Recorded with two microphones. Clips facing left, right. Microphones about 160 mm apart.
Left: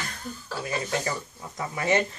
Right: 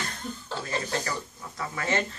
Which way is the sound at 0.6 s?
15° left (ahead or behind).